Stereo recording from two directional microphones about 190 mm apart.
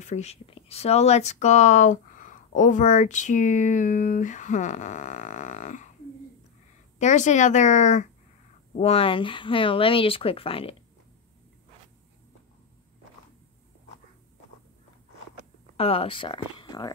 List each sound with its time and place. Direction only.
0.0 s speech: 35° left (ahead or behind)
7.0 s speech: 40° left (ahead or behind)
15.7 s speech: 30° left (ahead or behind)